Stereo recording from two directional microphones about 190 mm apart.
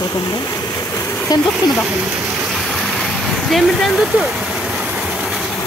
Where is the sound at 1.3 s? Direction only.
20° left (ahead or behind).